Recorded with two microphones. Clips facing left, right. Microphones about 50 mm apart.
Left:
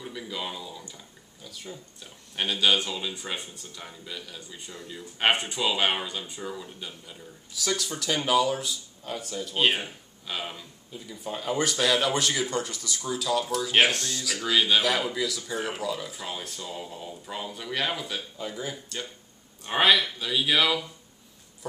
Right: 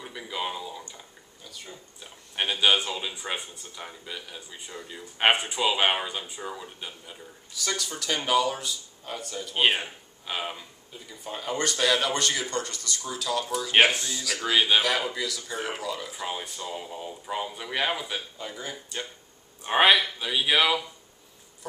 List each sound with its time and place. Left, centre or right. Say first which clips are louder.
0.0 s speech: right 2 dB; centre
1.4 s speech: left 3 dB; centre
2.0 s speech: right 2 dB; centre
7.5 s speech: left 2 dB; centre
18.5 s speech: left 3 dB; centre
19.6 s speech: right 2 dB; centre